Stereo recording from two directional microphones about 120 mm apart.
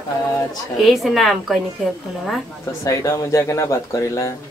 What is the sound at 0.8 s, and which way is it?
Speech, centre (ahead or behind).